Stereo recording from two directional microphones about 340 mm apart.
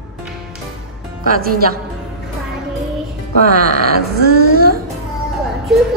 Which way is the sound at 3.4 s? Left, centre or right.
Right.